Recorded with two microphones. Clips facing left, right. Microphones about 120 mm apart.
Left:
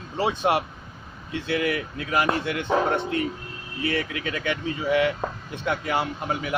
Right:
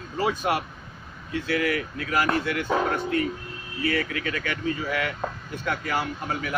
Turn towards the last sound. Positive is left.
turn(degrees=20)  # may be behind; listen again after turning